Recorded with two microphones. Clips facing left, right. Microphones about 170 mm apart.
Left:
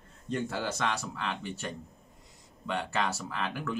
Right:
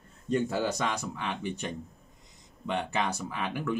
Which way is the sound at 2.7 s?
20° right (ahead or behind).